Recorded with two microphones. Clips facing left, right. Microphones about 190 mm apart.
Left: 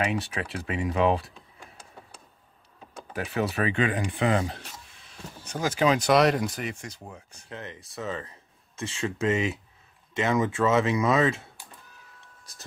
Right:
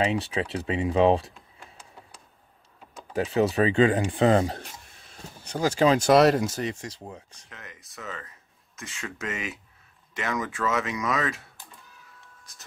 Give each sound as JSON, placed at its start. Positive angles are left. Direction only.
{"t": 0.0, "sound": "speech", "side_deg": -25}
{"t": 3.3, "sound": "speech", "side_deg": -25}
{"t": 7.4, "sound": "speech", "side_deg": 30}